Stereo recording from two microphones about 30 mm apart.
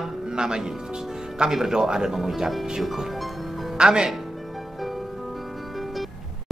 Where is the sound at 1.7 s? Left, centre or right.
Right.